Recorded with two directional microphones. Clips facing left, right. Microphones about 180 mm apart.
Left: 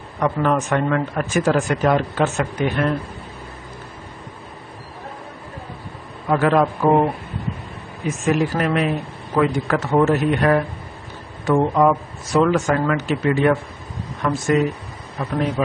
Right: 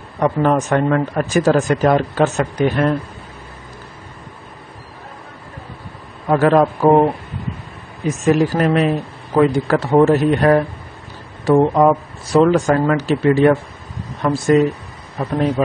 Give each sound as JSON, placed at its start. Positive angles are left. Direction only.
{"t": 0.2, "sound": "speech", "side_deg": -35}
{"t": 6.2, "sound": "speech", "side_deg": -40}
{"t": 8.2, "sound": "speech", "side_deg": -35}